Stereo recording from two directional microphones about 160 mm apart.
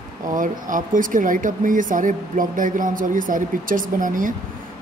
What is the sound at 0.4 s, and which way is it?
Speech, 55° right (ahead or behind).